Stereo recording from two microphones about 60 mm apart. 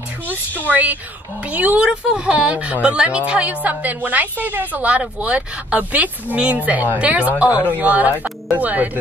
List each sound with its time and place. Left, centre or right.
1.4 s a woman's voice: right
1.9 s a woman's voice: centre